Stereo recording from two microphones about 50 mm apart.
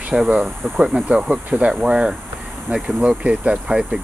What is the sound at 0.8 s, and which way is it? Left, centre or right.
Speech, right.